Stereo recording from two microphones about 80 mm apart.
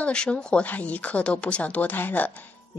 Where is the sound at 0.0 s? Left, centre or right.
Centre.